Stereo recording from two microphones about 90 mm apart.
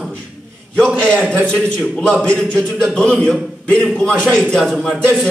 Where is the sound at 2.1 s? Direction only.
15° left (ahead or behind).